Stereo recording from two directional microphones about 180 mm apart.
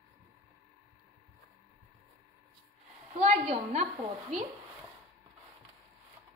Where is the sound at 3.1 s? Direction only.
40° right (ahead or behind).